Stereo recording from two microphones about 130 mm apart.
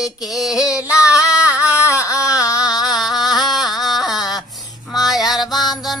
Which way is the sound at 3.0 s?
Centre (ahead or behind).